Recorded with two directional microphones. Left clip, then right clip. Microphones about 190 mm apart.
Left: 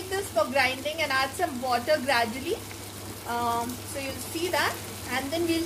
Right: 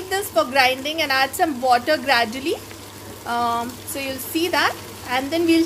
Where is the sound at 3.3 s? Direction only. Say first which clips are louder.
Right 6 dB; 60° right (ahead or behind).